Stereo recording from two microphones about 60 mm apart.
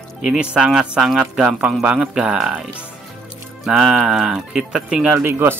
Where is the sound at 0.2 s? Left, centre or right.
Centre.